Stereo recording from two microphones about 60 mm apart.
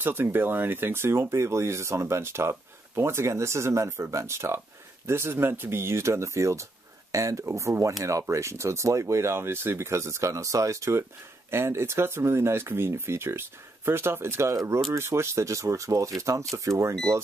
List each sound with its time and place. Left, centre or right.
0.0 s speech: right